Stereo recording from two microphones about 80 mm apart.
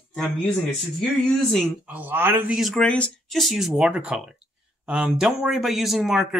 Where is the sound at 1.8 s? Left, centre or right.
Right.